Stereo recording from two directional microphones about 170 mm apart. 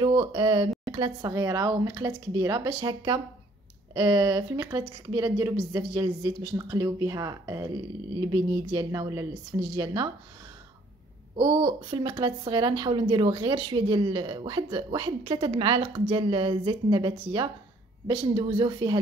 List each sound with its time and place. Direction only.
0.0 s speech: 30° right (ahead or behind)
11.3 s speech: 30° right (ahead or behind)